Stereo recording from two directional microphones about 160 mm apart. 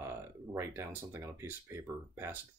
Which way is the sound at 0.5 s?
15° right (ahead or behind).